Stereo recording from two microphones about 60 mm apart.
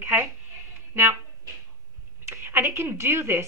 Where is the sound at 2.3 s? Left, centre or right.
Right.